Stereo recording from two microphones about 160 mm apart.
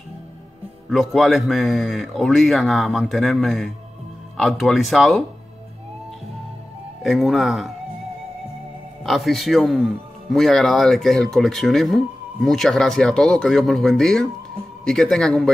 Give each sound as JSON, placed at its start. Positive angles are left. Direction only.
{"t": 0.8, "sound": "a man's voice", "side_deg": 0}
{"t": 7.0, "sound": "a man's voice", "side_deg": 0}
{"t": 9.0, "sound": "a man's voice", "side_deg": 0}